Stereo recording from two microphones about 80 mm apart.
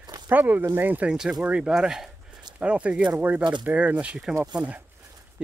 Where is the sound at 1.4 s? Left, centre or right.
Centre.